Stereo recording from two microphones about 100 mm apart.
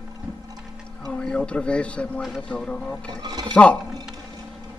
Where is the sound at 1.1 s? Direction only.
10° left (ahead or behind).